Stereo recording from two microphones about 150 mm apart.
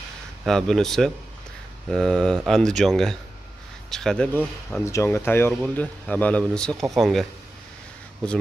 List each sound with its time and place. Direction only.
0.5 s speech: 5° left (ahead or behind)
4.8 s speech: 20° left (ahead or behind); by 7.2 s centre (ahead or behind)